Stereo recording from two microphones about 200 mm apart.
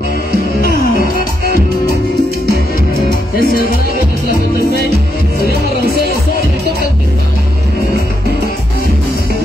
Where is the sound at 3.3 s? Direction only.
50° left (ahead or behind).